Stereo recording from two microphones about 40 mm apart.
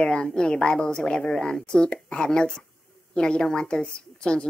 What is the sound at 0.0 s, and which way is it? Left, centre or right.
A woman's voice, centre.